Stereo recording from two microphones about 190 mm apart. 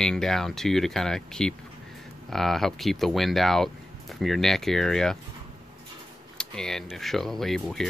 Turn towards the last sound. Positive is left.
turn(degrees=0)  # may be behind; listen again after turning